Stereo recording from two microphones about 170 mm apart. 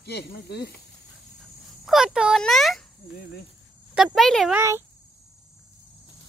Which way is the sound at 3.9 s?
Centre (ahead or behind).